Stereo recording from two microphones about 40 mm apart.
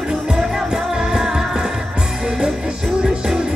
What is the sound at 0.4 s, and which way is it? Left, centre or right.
Music, centre.